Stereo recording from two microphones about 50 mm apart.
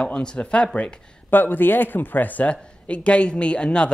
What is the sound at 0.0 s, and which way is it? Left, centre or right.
Speech, centre.